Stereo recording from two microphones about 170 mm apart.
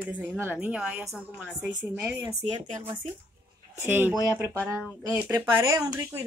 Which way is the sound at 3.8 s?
10° right (ahead or behind).